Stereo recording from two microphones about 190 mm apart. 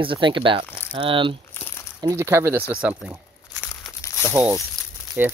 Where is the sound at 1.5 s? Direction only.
15° left (ahead or behind).